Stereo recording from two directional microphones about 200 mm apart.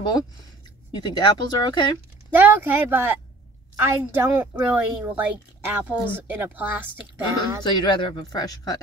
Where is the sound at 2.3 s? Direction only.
10° right (ahead or behind).